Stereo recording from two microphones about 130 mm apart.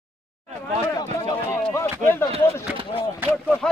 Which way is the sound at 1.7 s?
20° left (ahead or behind).